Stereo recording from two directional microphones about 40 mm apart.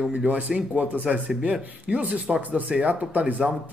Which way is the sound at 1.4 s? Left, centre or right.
Right.